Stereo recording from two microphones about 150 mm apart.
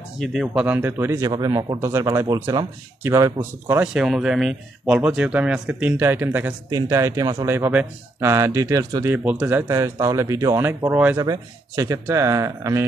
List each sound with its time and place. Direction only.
0.2 s speech: centre (ahead or behind); by 3.9 s 15° right (ahead or behind)
3.9 s speech: 5° right (ahead or behind); by 12.8 s 20° right (ahead or behind)